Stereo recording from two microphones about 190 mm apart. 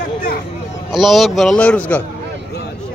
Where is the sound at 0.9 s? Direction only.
Centre (ahead or behind).